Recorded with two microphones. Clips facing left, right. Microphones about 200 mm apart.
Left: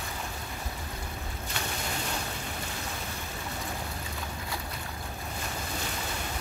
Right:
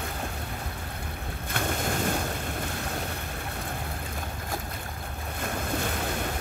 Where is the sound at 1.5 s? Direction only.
50° right (ahead or behind).